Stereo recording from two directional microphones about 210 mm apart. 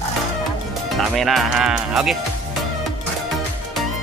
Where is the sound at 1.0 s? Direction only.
Centre (ahead or behind).